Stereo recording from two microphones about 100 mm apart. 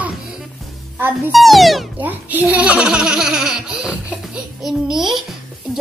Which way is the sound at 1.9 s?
15° right (ahead or behind).